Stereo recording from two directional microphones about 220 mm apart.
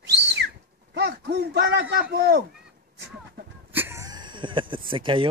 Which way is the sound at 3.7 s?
10° right (ahead or behind).